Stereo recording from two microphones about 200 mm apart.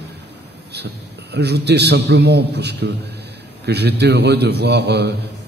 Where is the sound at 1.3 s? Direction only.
55° right (ahead or behind).